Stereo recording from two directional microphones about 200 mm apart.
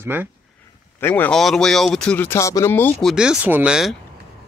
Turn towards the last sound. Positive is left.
turn(degrees=-5)  # may be behind; listen again after turning